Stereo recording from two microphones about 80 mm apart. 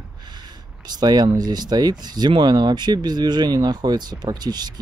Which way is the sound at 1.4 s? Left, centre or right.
Right.